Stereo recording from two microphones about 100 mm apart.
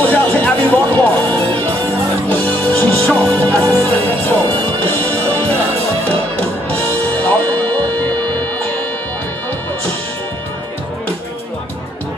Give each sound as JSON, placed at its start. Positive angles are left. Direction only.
{"t": 0.0, "sound": "music", "side_deg": 15}
{"t": 7.0, "sound": "music", "side_deg": 15}